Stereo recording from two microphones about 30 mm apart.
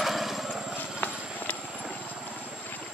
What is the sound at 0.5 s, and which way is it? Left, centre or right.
Vehicle, centre.